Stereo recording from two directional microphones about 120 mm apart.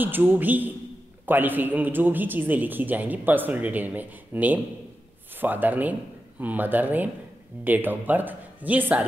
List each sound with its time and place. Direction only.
0.0 s speech: 15° right (ahead or behind)